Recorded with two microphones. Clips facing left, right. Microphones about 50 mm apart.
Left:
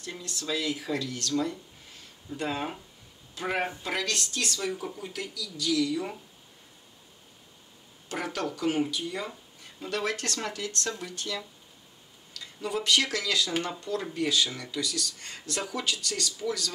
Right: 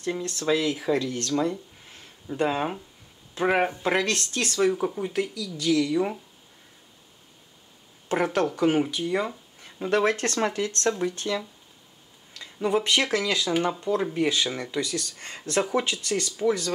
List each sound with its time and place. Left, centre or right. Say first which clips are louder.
0.0 s speech: right 10 dB; right
0.7 s speech: right 6 dB; centre
0.9 s speech: right 4 dB; right; by 3.8 s centre
3.8 s speech: right 6 dB; right
8.1 s speech: right 8 dB; right